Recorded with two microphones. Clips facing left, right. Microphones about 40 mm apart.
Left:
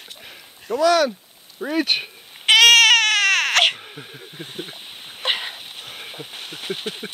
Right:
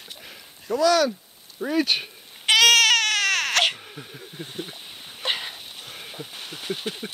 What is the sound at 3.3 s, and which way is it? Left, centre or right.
Baby cry, centre.